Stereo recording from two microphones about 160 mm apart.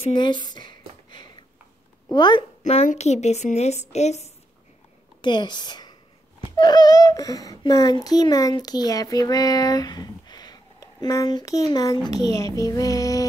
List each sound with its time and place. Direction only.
0.0 s a sound: 30° left (ahead or behind)
2.0 s a child's voice: 30° left (ahead or behind)
2.6 s speech: 45° left (ahead or behind)
5.2 s a woman's voice: 30° left (ahead or behind)